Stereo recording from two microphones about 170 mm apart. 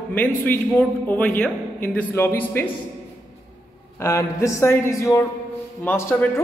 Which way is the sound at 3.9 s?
15° left (ahead or behind).